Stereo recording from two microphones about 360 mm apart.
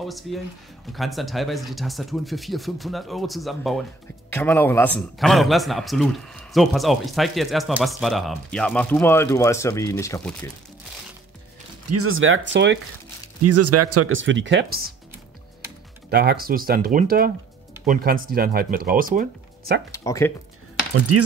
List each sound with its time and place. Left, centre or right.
0.0 s a man's voice: centre
11.9 s speech: right
16.1 s speech: right
19.9 s speech: centre
21.1 s speech: right